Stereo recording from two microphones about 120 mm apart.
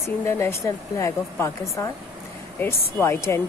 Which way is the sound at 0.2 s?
20° left (ahead or behind).